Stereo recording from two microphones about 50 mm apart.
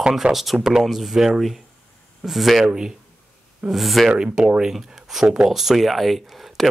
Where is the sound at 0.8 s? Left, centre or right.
Centre.